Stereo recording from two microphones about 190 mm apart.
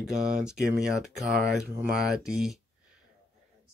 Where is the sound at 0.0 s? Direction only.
5° right (ahead or behind).